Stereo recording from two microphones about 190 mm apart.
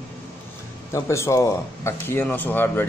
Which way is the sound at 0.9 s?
15° left (ahead or behind).